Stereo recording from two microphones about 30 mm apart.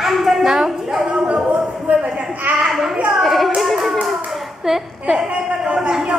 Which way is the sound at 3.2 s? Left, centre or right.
Centre.